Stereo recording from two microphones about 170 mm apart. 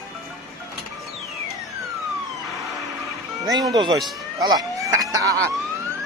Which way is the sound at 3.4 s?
20° right (ahead or behind).